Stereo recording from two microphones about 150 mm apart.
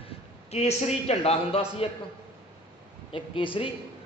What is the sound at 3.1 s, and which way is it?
Speech, 35° left (ahead or behind).